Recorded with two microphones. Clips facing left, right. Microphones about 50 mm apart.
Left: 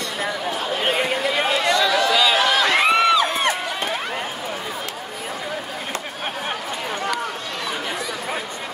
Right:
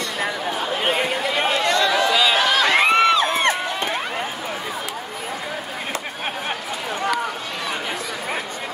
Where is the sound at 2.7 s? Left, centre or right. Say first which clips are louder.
Right 2 dB; right.